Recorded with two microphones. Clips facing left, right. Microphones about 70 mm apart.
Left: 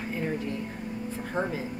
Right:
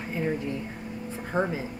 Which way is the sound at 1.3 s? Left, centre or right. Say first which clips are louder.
Right 3 dB; right.